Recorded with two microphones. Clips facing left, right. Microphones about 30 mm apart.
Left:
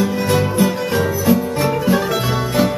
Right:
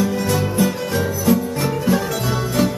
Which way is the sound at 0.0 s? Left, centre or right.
Centre.